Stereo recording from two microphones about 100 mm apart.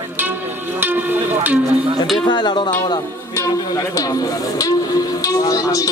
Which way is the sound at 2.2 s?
45° left (ahead or behind).